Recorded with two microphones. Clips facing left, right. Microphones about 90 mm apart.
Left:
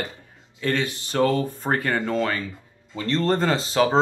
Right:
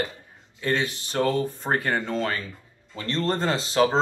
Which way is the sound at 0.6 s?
50° left (ahead or behind).